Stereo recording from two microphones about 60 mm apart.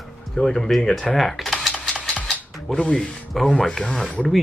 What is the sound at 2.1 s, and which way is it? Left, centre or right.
Mechanisms, left.